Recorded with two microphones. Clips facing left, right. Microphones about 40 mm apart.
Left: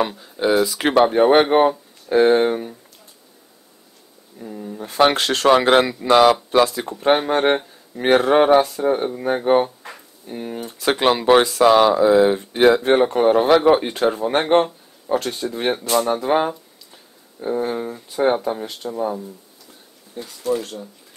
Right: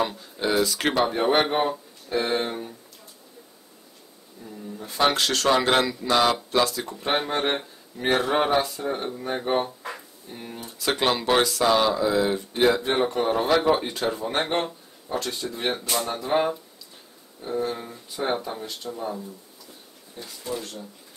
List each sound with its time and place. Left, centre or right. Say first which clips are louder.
0.1 s speech: left 6 dB; centre
0.9 s speech: left 9 dB; left
4.5 s speech: left 6 dB; left
4.7 s speech: left 6 dB; left
6.9 s speech: left 8 dB; left
10.9 s speech: left 7 dB; left
17.7 s speech: left 10 dB; left
18.6 s speech: left 5 dB; left
18.9 s speech: left 9 dB; left